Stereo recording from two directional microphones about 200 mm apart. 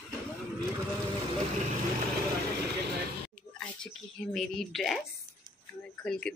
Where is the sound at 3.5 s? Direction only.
5° left (ahead or behind).